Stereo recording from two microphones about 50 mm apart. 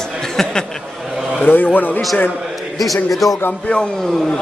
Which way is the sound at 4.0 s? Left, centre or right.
Centre.